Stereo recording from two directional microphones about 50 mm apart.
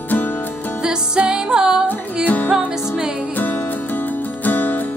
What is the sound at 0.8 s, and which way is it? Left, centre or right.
Music, centre.